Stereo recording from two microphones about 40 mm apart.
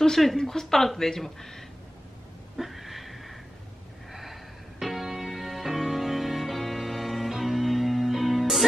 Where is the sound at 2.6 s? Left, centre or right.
Centre.